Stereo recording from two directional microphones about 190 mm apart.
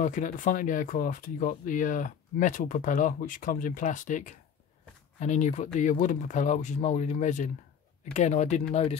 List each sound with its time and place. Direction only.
0.0 s speech: 45° left (ahead or behind)